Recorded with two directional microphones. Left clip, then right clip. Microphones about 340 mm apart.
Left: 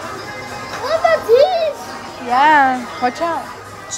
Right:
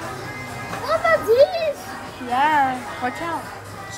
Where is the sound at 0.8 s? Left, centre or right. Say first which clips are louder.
Left 4 dB; centre.